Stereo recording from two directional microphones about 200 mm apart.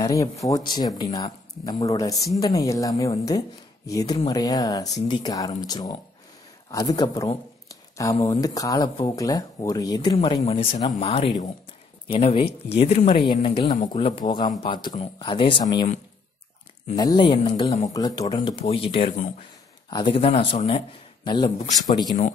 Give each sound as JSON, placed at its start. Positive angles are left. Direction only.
{"t": 0.0, "sound": "speech", "side_deg": 15}
{"t": 16.9, "sound": "speech", "side_deg": 20}
{"t": 17.9, "sound": "speech", "side_deg": 20}
{"t": 18.2, "sound": "speech", "side_deg": 30}
{"t": 19.9, "sound": "speech", "side_deg": 25}